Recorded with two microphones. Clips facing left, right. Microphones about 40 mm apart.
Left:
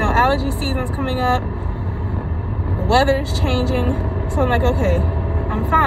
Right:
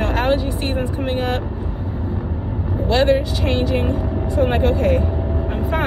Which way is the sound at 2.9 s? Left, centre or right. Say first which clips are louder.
Left 1 dB; left.